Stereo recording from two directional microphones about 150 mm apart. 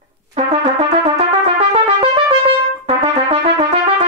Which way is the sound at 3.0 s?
40° right (ahead or behind).